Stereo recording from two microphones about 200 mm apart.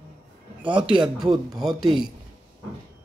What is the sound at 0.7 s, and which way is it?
Speech, 25° right (ahead or behind).